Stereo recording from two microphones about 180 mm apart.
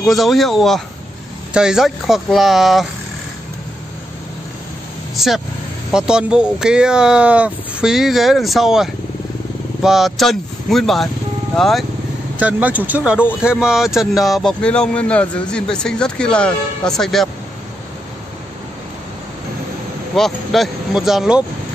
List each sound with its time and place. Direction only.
0.0 s speech: centre (ahead or behind)
5.1 s vehicle: centre (ahead or behind)
5.9 s speech: 5° right (ahead or behind)
20.2 s speech: centre (ahead or behind)